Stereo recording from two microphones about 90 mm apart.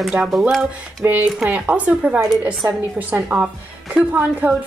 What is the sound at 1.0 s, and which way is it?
Speech, 20° right (ahead or behind).